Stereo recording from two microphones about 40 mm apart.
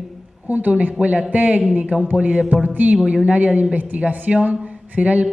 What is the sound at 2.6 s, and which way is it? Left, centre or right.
Music, right.